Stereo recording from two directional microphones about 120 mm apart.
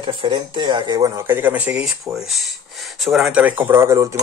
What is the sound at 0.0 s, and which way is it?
Speech, 40° right (ahead or behind).